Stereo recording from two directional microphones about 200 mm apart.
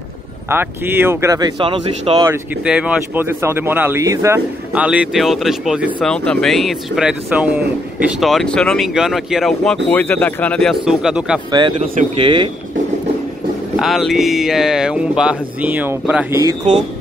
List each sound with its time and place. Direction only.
0.5 s speech: 10° right (ahead or behind)
2.2 s speech: 5° right (ahead or behind)
11.5 s speech: 25° right (ahead or behind)
13.7 s speech: centre (ahead or behind); by 16.8 s 20° right (ahead or behind)